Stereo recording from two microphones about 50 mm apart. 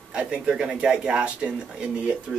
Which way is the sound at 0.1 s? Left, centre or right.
Right.